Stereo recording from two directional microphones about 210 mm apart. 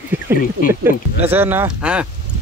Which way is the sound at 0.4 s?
40° left (ahead or behind).